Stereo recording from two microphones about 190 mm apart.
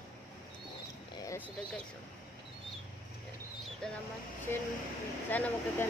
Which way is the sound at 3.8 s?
5° left (ahead or behind).